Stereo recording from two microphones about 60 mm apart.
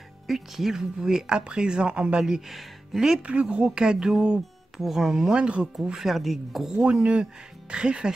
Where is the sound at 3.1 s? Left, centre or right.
Right.